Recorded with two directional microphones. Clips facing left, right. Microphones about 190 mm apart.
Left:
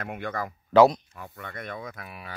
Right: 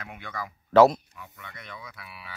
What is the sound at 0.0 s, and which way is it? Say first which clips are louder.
Speech: left 6 dB; 50° left (ahead or behind).